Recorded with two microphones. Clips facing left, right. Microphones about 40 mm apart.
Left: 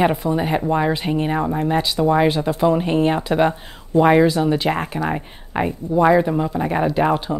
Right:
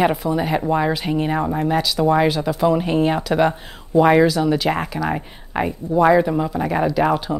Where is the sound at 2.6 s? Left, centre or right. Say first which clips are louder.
Even; centre.